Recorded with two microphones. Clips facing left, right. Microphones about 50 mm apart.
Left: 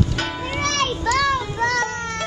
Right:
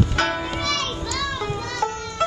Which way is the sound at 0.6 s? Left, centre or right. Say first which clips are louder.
Left 4 dB; left.